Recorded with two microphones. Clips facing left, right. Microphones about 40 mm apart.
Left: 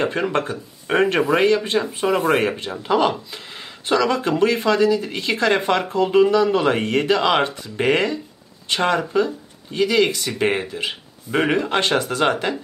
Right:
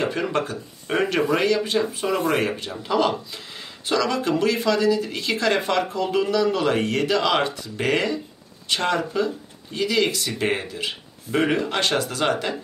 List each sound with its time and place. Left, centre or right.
0.0 s speech: left